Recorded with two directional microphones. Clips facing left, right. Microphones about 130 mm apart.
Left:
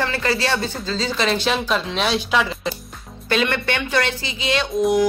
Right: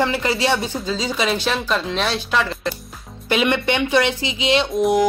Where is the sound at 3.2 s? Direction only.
15° right (ahead or behind).